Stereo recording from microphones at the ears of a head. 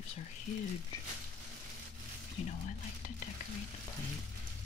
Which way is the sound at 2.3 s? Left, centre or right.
Left.